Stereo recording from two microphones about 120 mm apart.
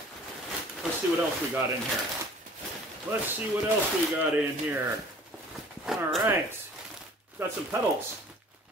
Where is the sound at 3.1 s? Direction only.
20° right (ahead or behind).